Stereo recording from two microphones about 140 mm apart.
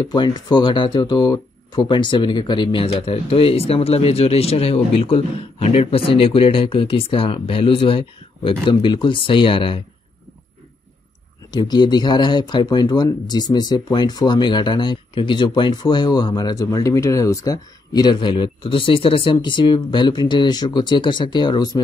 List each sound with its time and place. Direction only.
0.0 s speech: 30° left (ahead or behind)
11.5 s speech: 30° left (ahead or behind)